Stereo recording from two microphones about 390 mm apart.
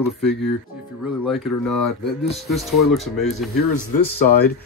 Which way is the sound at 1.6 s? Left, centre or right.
Left.